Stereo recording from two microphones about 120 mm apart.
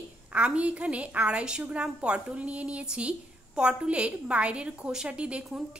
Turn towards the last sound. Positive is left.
turn(degrees=-10)  # may be behind; listen again after turning